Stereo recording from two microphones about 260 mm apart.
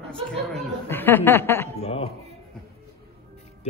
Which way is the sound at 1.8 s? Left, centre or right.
Left.